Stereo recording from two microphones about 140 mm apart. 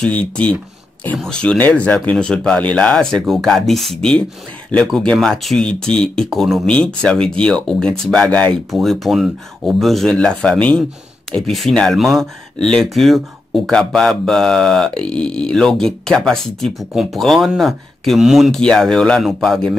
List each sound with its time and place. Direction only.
0.0 s speech: 10° left (ahead or behind)